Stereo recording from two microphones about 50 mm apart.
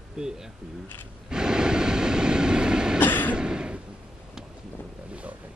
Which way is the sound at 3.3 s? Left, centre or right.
Centre.